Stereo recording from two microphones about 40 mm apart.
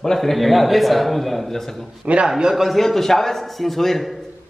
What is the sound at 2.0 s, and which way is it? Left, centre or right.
Speech, right.